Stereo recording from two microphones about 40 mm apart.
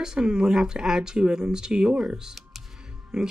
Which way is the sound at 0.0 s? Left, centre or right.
Centre.